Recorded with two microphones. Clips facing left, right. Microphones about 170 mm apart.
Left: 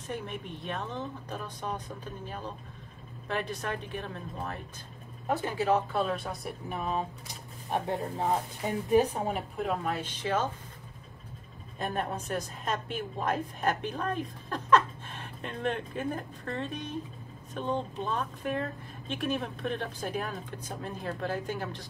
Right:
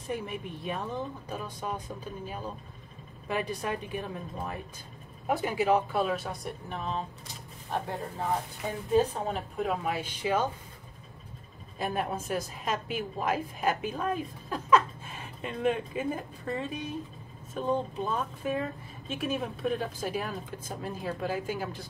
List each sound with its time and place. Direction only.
0.1 s a woman's voice: 10° right (ahead or behind); by 7.0 s 10° left (ahead or behind)
7.7 s a woman's voice: 20° left (ahead or behind)
9.6 s a woman's voice: 5° right (ahead or behind)
11.8 s a woman's voice: 5° right (ahead or behind)